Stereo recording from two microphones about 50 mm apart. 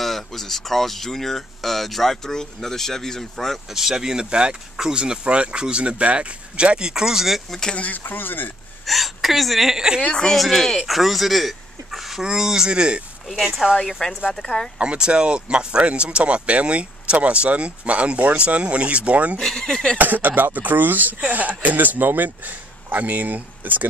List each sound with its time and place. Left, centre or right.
0.0 s speech: centre
3.7 s speech: centre
7.7 s speech: left
8.0 s speech: left
8.8 s speech: centre
10.1 s speech: centre
13.4 s speech: centre
13.7 s speech: centre
14.8 s speech: right
19.4 s speech: centre
20.0 s speech: right